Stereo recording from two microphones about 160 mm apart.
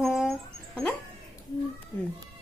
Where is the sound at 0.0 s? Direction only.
Centre (ahead or behind).